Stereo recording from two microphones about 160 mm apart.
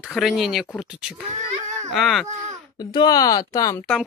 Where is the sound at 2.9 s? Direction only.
25° left (ahead or behind).